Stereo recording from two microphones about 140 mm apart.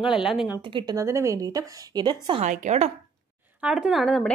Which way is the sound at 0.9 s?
20° right (ahead or behind).